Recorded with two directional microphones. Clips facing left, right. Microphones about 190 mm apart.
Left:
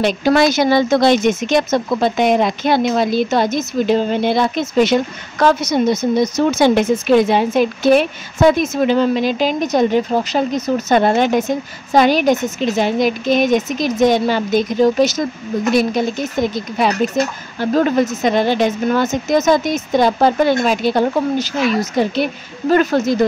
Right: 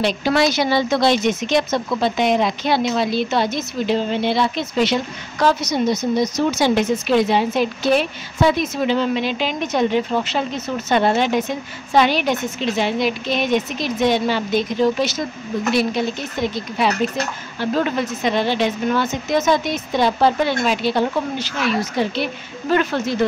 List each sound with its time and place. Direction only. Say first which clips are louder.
0.0 s speech: left 4 dB; 50° left (ahead or behind)